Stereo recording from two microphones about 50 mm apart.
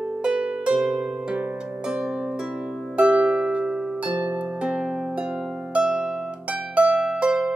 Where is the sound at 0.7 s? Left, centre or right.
Centre.